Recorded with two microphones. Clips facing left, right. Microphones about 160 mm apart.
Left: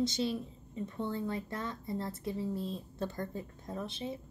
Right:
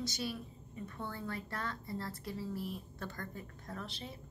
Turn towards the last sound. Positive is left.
turn(degrees=20)  # may be behind; listen again after turning